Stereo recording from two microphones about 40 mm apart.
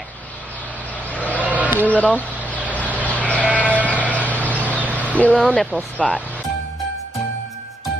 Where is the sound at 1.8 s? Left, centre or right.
Left.